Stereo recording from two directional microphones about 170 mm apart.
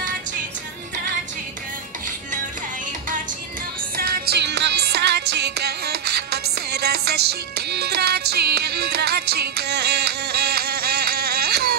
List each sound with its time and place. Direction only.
3.9 s music: 60° right (ahead or behind)